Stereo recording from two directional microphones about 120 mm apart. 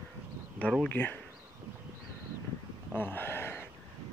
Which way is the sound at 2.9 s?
15° left (ahead or behind).